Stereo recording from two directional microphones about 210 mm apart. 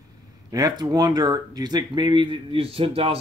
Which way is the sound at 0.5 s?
20° right (ahead or behind).